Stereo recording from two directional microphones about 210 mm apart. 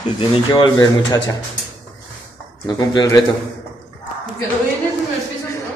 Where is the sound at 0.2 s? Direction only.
25° left (ahead or behind).